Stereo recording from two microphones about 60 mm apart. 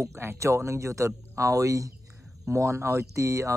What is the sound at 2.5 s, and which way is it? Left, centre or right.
Speech, right.